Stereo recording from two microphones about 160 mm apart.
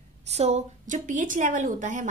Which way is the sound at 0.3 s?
45° right (ahead or behind).